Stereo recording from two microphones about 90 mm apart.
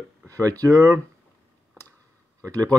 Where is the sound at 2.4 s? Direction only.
45° right (ahead or behind).